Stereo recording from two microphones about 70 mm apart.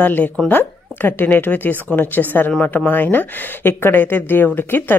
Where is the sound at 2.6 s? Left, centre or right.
Centre.